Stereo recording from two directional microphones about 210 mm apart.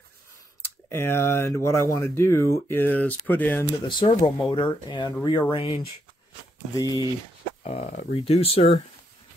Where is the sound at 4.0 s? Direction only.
25° left (ahead or behind).